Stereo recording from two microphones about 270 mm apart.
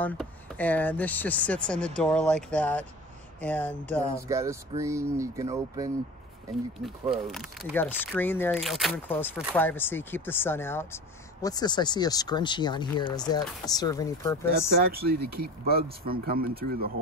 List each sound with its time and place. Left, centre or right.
0.0 s speech: centre
4.3 s speech: centre
7.2 s speech: centre
14.8 s speech: right